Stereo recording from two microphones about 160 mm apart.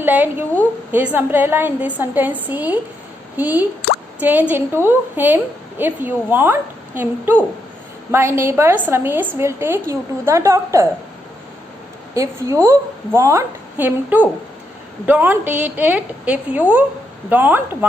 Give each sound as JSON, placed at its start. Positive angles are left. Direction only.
{"t": 0.0, "sound": "a woman's voice", "side_deg": -10}
{"t": 12.1, "sound": "a woman's voice", "side_deg": -20}